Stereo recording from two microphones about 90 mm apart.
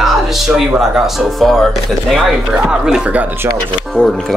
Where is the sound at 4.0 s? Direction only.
5° left (ahead or behind).